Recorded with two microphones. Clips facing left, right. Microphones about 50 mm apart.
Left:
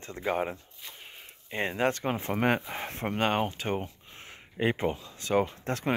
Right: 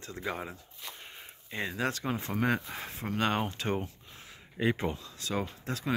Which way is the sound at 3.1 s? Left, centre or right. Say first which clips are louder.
Left 2 dB; left.